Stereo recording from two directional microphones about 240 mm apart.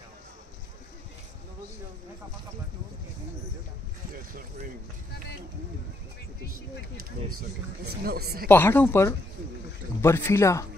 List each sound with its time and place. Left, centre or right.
7.3 s speech: right
8.5 s speech: centre